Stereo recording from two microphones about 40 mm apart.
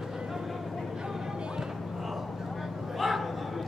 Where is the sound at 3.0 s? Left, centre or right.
Centre.